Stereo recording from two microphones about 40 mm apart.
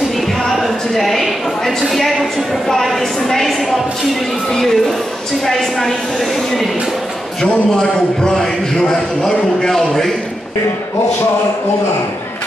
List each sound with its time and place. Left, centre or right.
0.4 s a sound: centre
1.8 s a woman's voice: centre
2.7 s a sound: centre
4.5 s music: centre
5.4 s a woman's voice: centre
7.7 s a man's voice: centre